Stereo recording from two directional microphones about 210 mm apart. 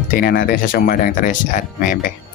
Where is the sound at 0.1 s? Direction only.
45° left (ahead or behind).